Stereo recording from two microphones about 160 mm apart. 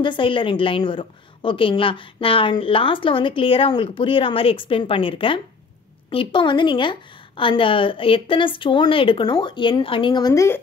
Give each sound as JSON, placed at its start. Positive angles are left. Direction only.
{"t": 0.0, "sound": "a woman's voice", "side_deg": 30}